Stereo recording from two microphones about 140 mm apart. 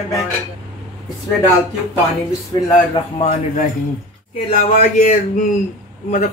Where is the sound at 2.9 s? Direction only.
45° left (ahead or behind).